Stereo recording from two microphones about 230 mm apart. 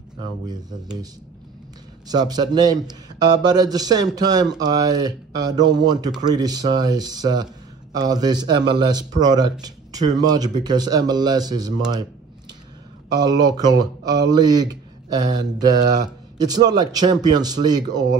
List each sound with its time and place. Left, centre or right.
0.2 s speech: centre
2.0 s speech: centre
13.4 s speech: centre